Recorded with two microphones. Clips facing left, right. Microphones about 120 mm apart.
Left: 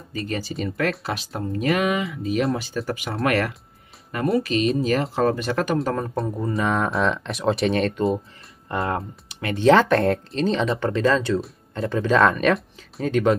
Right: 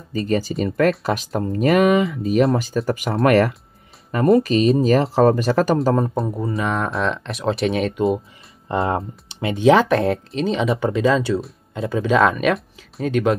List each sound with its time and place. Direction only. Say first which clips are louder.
0.1 s speech: right 7 dB; 35° right (ahead or behind)
6.1 s speech: right 2 dB; 5° right (ahead or behind)
8.6 s speech: right 4 dB; 25° right (ahead or behind)
9.6 s speech: right 1 dB; 10° right (ahead or behind)